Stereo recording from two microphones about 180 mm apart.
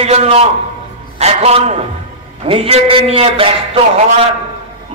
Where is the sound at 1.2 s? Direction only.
35° right (ahead or behind).